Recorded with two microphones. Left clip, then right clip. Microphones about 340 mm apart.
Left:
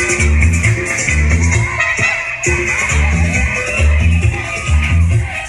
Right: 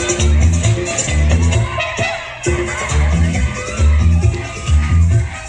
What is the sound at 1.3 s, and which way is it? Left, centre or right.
Music, right.